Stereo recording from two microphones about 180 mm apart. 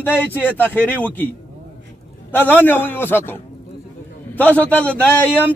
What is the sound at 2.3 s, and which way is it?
A man's voice, 10° left (ahead or behind).